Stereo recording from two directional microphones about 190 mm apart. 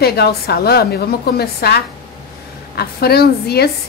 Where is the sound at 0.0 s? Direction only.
55° left (ahead or behind).